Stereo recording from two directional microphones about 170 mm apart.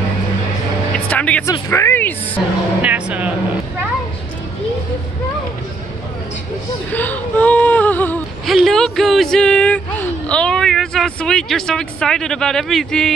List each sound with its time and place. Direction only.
0.9 s vehicle: 5° left (ahead or behind)
1.4 s a sound: 20° left (ahead or behind)
2.8 s speech: 10° right (ahead or behind)
6.9 s whimper: 10° left (ahead or behind)
8.5 s a sound: centre (ahead or behind)
10.2 s speech: 5° left (ahead or behind)